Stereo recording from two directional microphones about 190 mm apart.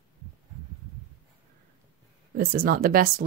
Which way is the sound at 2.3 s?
50° right (ahead or behind).